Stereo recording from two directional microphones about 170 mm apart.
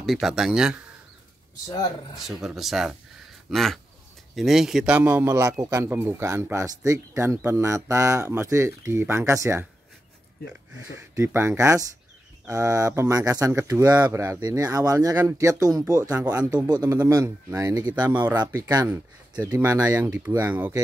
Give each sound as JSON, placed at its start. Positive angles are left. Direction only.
{"t": 0.0, "sound": "speech", "side_deg": 0}
{"t": 2.1, "sound": "speech", "side_deg": 0}